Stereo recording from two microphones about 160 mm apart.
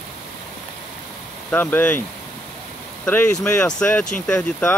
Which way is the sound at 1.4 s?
10° left (ahead or behind).